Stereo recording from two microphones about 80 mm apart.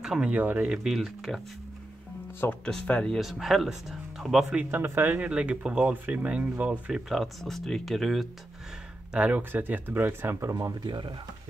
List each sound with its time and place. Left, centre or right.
0.0 s speech: centre
0.3 s speech: right
0.8 s speech: centre
2.6 s speech: centre
3.2 s speech: centre
4.6 s speech: right
6.9 s speech: centre
9.1 s speech: centre
10.5 s speech: right